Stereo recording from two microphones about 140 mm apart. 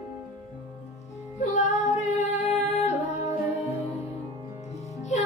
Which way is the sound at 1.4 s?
55° left (ahead or behind).